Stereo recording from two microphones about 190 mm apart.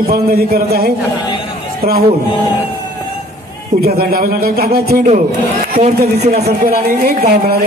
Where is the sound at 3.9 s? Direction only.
50° right (ahead or behind).